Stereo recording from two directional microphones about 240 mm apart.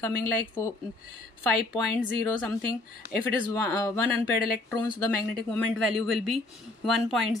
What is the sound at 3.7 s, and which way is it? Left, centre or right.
Speech, centre.